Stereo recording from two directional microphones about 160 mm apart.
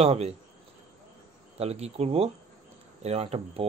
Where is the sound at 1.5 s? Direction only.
40° right (ahead or behind).